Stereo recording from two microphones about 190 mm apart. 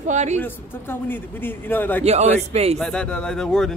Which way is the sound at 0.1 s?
35° right (ahead or behind).